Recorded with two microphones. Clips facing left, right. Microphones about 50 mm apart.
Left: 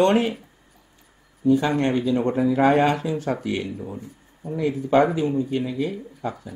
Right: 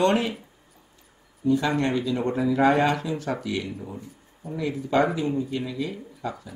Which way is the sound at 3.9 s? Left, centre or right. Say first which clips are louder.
Left 3 dB; centre.